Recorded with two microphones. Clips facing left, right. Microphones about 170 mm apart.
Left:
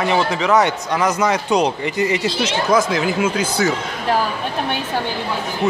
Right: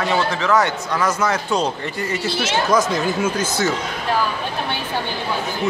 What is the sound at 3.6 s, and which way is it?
Speech, 90° left.